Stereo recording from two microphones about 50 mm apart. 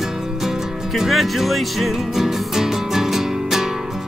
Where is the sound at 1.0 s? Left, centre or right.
Centre.